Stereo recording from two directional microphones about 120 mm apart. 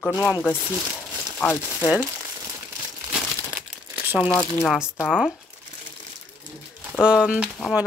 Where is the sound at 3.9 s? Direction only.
10° right (ahead or behind).